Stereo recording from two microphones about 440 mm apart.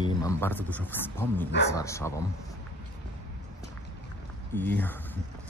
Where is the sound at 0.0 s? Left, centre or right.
Centre.